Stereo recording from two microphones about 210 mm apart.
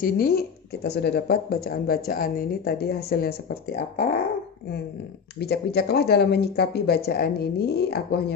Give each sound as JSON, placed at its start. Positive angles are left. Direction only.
{"t": 0.0, "sound": "speech", "side_deg": 45}
{"t": 5.4, "sound": "speech", "side_deg": 50}